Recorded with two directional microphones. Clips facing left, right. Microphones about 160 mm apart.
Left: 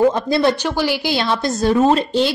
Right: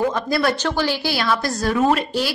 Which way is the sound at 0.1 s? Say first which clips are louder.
Left 4 dB; 25° left (ahead or behind).